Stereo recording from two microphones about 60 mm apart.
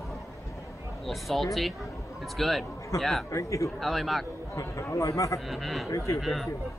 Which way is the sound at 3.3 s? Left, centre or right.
Left.